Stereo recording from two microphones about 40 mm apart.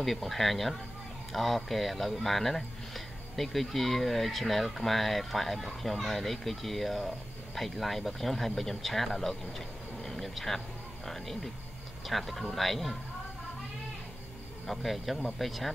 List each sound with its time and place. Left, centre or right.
0.0 s speech: centre
10.0 s a sound: centre
11.1 s speech: centre
14.7 s speech: centre